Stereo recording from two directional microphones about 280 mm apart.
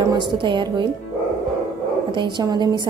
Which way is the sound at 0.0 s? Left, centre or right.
Centre.